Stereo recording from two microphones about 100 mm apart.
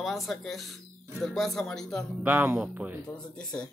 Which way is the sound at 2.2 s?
15° right (ahead or behind).